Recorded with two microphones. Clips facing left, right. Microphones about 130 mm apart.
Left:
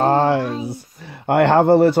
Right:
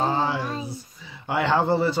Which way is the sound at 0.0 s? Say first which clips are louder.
Left 8 dB; 60° left (ahead or behind).